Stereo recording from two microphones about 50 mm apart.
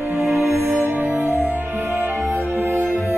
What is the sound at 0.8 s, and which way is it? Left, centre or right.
Music, right.